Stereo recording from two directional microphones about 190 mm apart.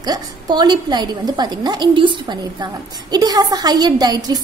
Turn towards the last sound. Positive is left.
turn(degrees=-20)  # may be behind; listen again after turning